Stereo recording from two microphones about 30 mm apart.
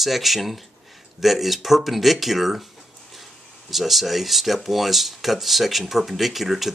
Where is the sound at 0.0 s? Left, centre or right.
Centre.